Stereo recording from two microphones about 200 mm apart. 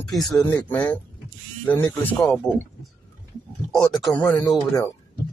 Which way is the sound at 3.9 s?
Centre (ahead or behind).